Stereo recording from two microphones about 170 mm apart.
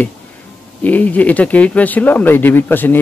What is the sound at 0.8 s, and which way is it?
Speech, 10° left (ahead or behind).